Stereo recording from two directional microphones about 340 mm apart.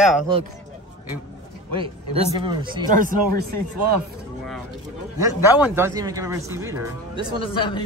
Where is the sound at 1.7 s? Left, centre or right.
Centre.